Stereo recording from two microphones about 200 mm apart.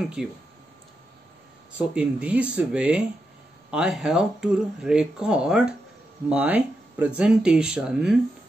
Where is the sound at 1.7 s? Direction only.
5° right (ahead or behind).